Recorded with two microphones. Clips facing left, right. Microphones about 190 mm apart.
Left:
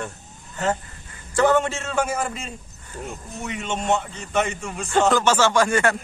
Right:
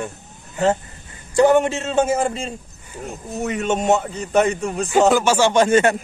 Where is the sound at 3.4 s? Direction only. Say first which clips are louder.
Right 8 dB; 45° right (ahead or behind).